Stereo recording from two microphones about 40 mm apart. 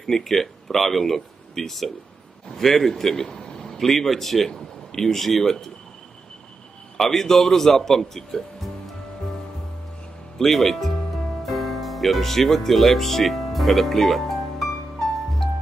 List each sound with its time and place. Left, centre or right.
0.0 s speech: centre
7.0 s a man's voice: centre
10.4 s speech: centre